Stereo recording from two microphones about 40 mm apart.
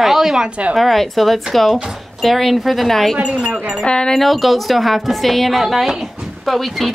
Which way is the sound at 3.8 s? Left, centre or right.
Centre.